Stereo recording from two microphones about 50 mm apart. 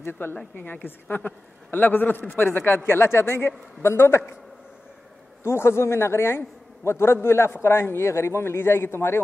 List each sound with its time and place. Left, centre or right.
0.0 s a man's voice: left
5.4 s a man's voice: left